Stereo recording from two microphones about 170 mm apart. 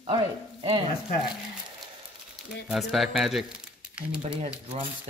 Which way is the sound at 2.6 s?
Centre (ahead or behind).